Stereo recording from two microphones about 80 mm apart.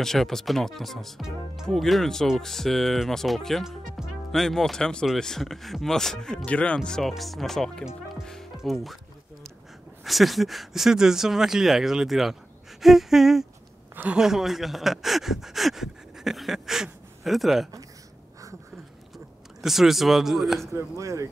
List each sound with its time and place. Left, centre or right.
0.0 s speech: centre
3.6 s music: centre
4.3 s speech: centre
10.0 s speech: centre
19.1 s speech: centre
21.0 s speech: right